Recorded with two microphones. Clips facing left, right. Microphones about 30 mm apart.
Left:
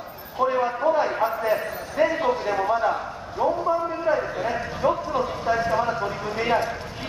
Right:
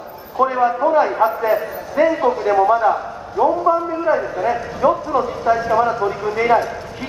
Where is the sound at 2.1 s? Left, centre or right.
Centre.